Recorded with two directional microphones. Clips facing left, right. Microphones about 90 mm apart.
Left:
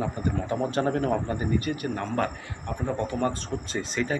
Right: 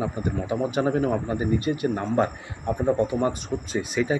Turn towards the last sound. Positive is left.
turn(degrees=-10)  # may be behind; listen again after turning